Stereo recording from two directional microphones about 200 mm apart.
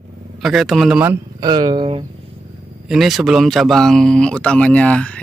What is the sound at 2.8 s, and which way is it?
Speech, centre (ahead or behind).